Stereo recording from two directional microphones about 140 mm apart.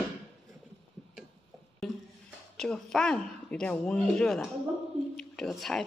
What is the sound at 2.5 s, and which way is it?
Speech, 5° left (ahead or behind).